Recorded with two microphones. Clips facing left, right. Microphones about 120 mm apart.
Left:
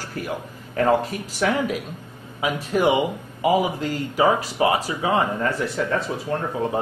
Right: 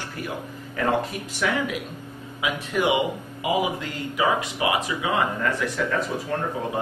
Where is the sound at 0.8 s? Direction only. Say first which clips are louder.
Left 4 dB; 40° left (ahead or behind).